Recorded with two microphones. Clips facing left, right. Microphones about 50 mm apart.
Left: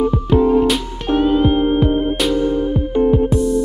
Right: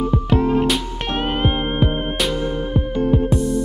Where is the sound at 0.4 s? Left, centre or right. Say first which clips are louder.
Left 6 dB; right.